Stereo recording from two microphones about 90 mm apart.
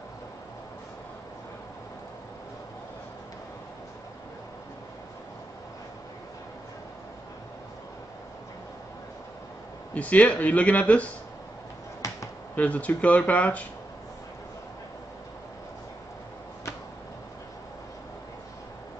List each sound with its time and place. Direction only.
9.9 s speech: 15° left (ahead or behind)
12.5 s speech: 15° left (ahead or behind)